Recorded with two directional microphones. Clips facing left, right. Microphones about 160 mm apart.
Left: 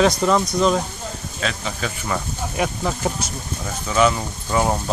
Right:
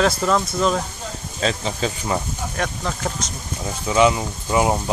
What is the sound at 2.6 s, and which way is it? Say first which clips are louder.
Speech: left 4 dB; 10° left (ahead or behind).